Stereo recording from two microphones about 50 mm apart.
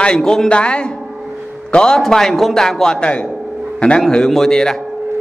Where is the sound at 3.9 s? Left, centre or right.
Centre.